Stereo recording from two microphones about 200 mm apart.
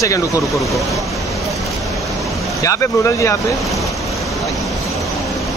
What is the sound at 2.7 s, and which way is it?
Speech, 15° left (ahead or behind).